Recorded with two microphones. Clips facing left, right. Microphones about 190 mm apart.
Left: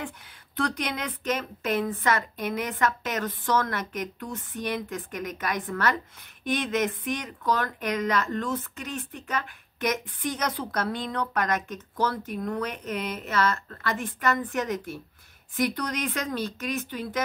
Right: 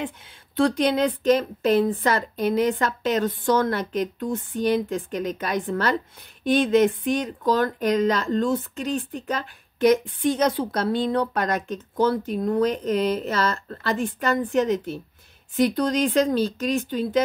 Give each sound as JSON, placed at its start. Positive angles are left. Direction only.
{"t": 0.6, "sound": "speech", "side_deg": -30}